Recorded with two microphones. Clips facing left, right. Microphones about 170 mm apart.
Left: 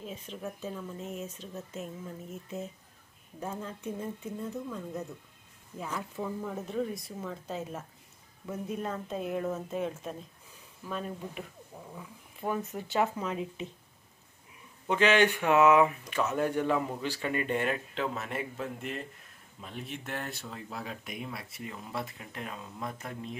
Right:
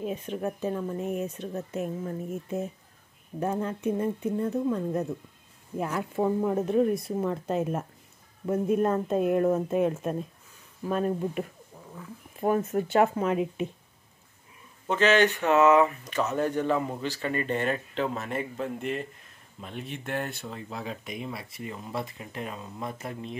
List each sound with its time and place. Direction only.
0.0 s speech: 60° right (ahead or behind)
14.9 s speech: 10° left (ahead or behind)